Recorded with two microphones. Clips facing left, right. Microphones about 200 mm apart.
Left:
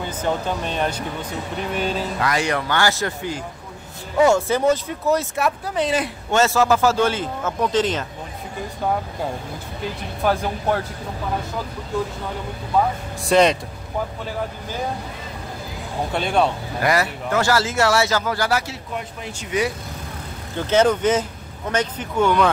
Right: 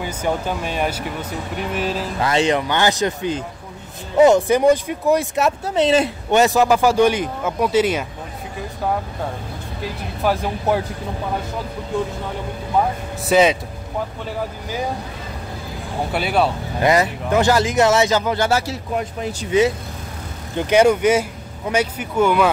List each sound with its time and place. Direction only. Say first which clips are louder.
0.0 s speech: right 1 dB; 10° right (ahead or behind)
2.1 s speech: right 7 dB; 25° right (ahead or behind); by 8.0 s 10° right (ahead or behind)
10.2 s speech: right 1 dB; 5° right (ahead or behind)
13.3 s speech: right 1 dB; 5° right (ahead or behind)
16.1 s speech: right 1 dB; 5° right (ahead or behind)
16.8 s speech: right 4 dB; 20° right (ahead or behind)
20.5 s speech: right 3 dB; 10° right (ahead or behind)